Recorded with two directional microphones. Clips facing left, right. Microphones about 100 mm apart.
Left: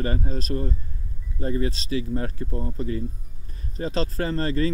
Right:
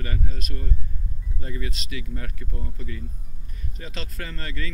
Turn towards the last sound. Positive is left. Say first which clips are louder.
# left 11 dB
turn(degrees=35)  # may be behind; listen again after turning